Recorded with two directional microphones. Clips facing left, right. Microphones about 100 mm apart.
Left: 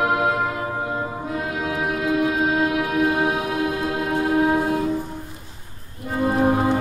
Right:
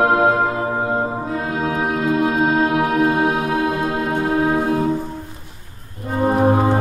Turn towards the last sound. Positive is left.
turn(degrees=-35)  # may be behind; listen again after turning